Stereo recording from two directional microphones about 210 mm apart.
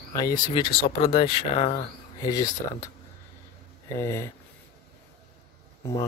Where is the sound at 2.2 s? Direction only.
15° left (ahead or behind).